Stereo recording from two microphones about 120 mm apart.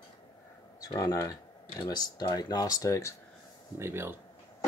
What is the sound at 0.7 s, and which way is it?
Speech, 30° left (ahead or behind).